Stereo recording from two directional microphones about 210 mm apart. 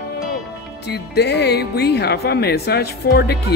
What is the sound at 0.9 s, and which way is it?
Speech, 55° left (ahead or behind).